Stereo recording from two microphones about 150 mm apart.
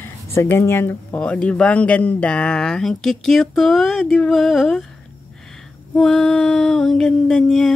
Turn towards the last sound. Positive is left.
turn(degrees=5)  # may be behind; listen again after turning